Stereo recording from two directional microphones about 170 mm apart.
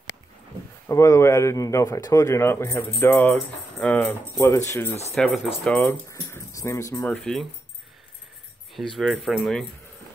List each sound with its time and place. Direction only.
0.8 s speech: 15° left (ahead or behind)
5.1 s speech: centre (ahead or behind)
5.9 s speech: 15° left (ahead or behind)
7.1 s speech: 5° left (ahead or behind)
8.7 s speech: centre (ahead or behind)